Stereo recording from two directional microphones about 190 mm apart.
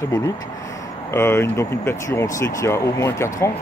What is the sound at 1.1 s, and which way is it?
Speech, 15° left (ahead or behind).